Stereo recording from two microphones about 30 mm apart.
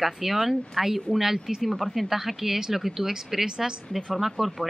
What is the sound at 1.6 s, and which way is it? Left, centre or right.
Speech, centre.